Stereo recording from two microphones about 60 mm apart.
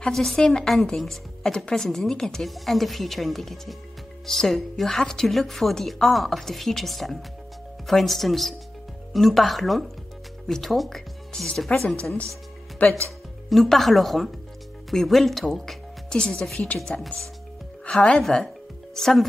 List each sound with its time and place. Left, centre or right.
0.0 s a woman's voice: centre
12.8 s speech: left
13.5 s a woman's voice: centre
16.1 s a woman's voice: centre